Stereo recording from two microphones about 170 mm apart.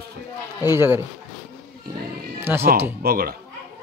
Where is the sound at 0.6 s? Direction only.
15° right (ahead or behind).